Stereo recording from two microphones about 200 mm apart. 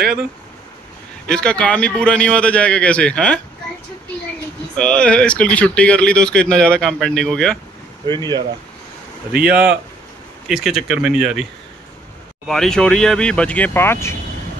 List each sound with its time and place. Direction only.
1.2 s speech: 5° left (ahead or behind)
4.7 s speech: 5° left (ahead or behind)
8.1 s speech: 20° right (ahead or behind)
10.5 s speech: centre (ahead or behind)
12.4 s speech: centre (ahead or behind)